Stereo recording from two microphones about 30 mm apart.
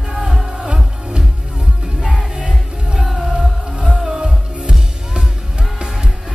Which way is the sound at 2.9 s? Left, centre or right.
Centre.